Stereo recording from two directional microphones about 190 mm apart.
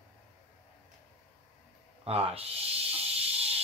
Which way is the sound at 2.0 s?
30° right (ahead or behind).